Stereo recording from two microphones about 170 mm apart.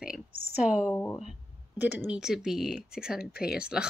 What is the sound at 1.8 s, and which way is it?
A woman's voice, 10° right (ahead or behind).